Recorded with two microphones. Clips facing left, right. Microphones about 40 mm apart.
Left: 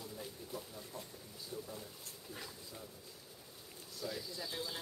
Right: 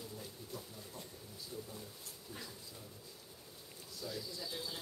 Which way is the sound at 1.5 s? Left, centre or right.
Centre.